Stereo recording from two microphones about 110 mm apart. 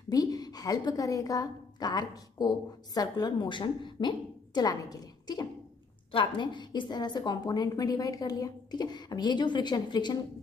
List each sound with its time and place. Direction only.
0.1 s a woman's voice: 35° left (ahead or behind)
4.6 s a woman's voice: 35° left (ahead or behind)